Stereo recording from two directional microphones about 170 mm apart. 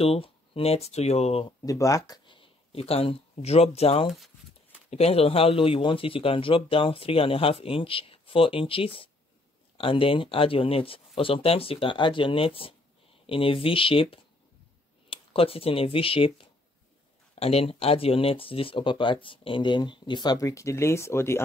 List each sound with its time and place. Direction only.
0.0 s speech: 35° left (ahead or behind)
1.7 s speech: 20° left (ahead or behind)